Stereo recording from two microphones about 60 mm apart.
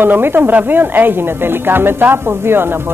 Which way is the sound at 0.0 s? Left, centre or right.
Right.